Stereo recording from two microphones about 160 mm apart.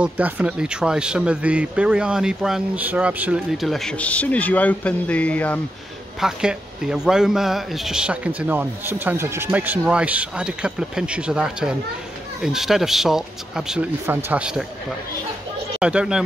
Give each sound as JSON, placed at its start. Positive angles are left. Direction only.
{"t": 0.0, "sound": "speech", "side_deg": -10}
{"t": 6.1, "sound": "speech", "side_deg": -5}
{"t": 15.8, "sound": "speech", "side_deg": -5}